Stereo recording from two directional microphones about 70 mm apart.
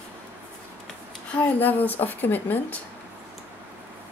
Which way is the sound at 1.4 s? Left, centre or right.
Left.